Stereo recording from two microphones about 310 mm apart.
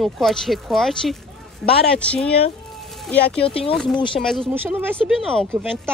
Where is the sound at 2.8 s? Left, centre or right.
Centre.